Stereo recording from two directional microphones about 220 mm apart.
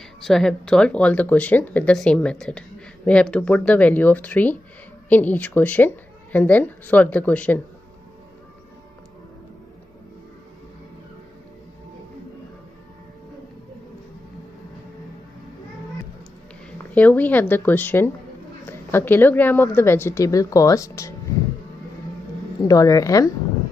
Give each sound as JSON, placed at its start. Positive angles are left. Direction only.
{"t": 0.2, "sound": "speech", "side_deg": 0}
{"t": 16.9, "sound": "speech", "side_deg": 5}
{"t": 22.6, "sound": "speech", "side_deg": 15}